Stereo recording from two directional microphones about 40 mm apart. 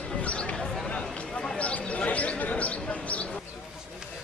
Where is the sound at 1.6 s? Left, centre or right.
Left.